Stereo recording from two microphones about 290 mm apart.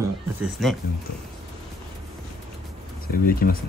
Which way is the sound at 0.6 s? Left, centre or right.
Centre.